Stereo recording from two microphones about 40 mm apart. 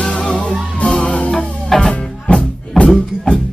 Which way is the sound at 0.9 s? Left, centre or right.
Left.